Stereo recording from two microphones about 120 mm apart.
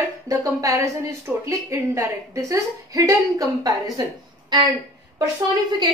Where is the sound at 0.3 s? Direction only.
30° right (ahead or behind).